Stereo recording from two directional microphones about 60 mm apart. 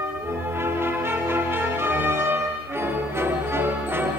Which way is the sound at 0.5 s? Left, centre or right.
Right.